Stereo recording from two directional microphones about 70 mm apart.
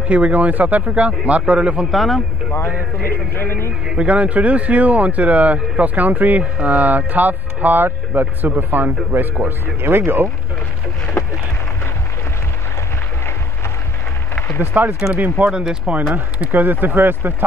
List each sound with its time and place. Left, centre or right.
0.1 s speech: centre
1.9 s speech: centre
3.1 s speech: left
3.9 s speech: centre
14.6 s speech: right
15.5 s speech: centre
16.8 s speech: right